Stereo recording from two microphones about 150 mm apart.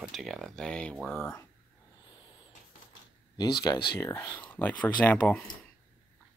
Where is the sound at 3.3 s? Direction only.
25° left (ahead or behind).